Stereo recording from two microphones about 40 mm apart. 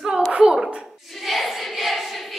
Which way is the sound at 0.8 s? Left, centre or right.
Centre.